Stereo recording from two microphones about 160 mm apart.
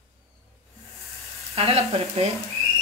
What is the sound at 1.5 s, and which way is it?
Speech, 40° right (ahead or behind).